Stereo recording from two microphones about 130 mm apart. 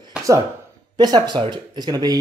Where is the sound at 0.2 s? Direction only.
10° right (ahead or behind).